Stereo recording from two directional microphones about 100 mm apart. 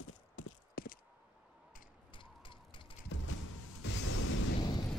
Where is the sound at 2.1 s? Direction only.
55° left (ahead or behind).